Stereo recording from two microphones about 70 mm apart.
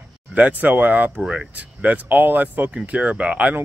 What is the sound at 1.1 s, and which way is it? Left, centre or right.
Speech, centre.